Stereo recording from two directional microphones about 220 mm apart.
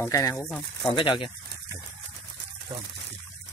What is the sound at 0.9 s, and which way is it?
Speech, 20° left (ahead or behind).